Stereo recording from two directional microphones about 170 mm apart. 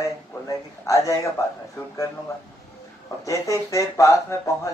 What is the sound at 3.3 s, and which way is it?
Speech, 15° left (ahead or behind).